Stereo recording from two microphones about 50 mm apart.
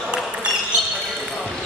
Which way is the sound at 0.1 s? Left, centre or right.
Right.